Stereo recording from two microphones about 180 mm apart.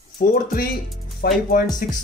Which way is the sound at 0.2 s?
50° left (ahead or behind).